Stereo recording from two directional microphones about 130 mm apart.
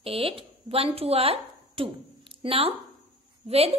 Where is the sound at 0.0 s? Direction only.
45° right (ahead or behind).